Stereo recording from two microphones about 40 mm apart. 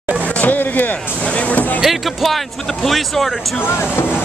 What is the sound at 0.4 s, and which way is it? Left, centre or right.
Speech, left.